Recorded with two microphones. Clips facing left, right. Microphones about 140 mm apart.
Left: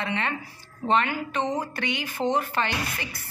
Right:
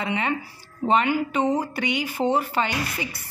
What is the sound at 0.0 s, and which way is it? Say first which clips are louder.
Speech: right 3 dB; 10° right (ahead or behind).